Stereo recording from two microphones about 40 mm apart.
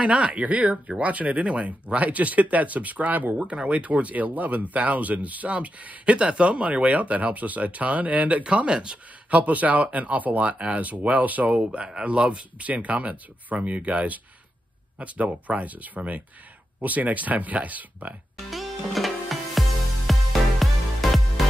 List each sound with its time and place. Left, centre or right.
0.0 s speech: right
3.3 s speech: right
6.1 s speech: right
6.5 s speech: right
8.5 s speech: right
9.3 s speech: right
11.5 s speech: right
15.2 s speech: right
18.5 s music: centre